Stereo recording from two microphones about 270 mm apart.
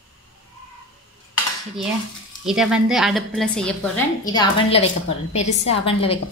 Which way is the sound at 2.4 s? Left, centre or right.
Centre.